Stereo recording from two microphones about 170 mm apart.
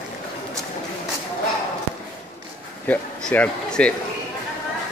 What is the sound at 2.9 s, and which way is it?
Speech, 10° left (ahead or behind).